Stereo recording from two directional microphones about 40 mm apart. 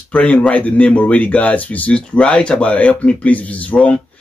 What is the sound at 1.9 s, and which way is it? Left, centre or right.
Speech, left.